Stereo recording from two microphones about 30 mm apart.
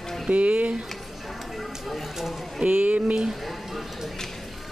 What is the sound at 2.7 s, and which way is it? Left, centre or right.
Speech, right.